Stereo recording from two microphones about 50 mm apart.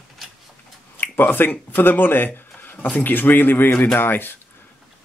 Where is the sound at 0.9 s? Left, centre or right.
Left.